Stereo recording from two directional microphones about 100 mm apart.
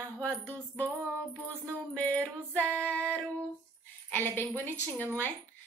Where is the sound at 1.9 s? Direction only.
15° left (ahead or behind).